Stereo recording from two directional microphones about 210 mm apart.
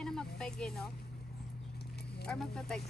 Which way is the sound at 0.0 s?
5° left (ahead or behind).